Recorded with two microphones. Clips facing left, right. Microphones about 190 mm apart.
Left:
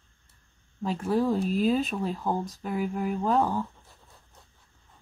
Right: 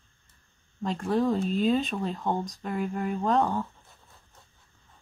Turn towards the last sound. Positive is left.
turn(degrees=5)  # may be behind; listen again after turning